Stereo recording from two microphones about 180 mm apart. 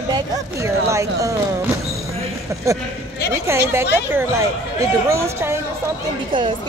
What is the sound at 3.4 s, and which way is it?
Speech, 15° right (ahead or behind).